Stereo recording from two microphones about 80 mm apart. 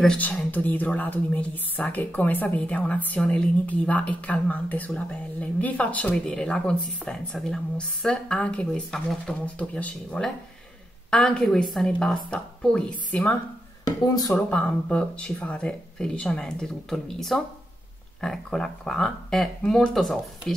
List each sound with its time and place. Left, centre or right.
0.2 s a woman's voice: left
13.8 s speech: left
14.3 s speech: centre